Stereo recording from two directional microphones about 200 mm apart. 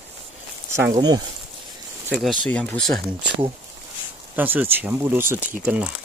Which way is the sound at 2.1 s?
Centre (ahead or behind).